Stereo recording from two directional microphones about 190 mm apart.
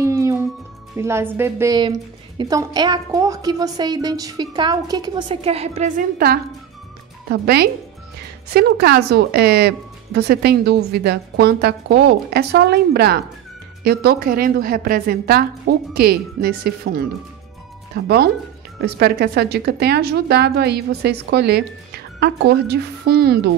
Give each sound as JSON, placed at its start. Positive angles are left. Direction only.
{"t": 0.0, "sound": "music", "side_deg": -15}
{"t": 0.9, "sound": "a woman's voice", "side_deg": -15}
{"t": 6.1, "sound": "a woman's voice", "side_deg": -50}